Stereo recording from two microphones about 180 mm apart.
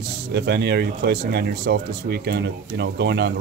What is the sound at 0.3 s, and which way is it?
Speech, 65° right (ahead or behind).